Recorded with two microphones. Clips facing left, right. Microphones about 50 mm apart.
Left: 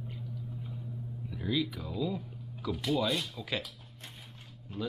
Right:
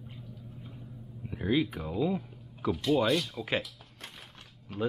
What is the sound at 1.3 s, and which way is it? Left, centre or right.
Speech, right.